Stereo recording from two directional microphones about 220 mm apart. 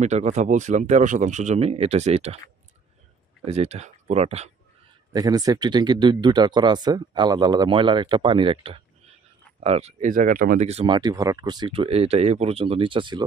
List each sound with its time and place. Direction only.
0.0 s speech: 30° right (ahead or behind)
3.4 s speech: 30° right (ahead or behind)
5.1 s speech: 15° right (ahead or behind)